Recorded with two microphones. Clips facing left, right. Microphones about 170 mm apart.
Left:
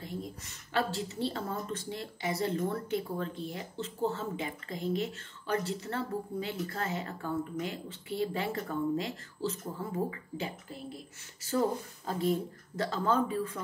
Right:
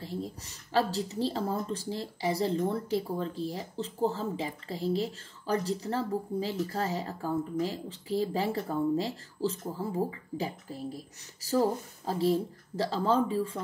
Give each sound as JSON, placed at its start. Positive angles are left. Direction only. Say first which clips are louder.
{"t": 0.0, "sound": "speech", "louder": "right 3 dB", "side_deg": -30}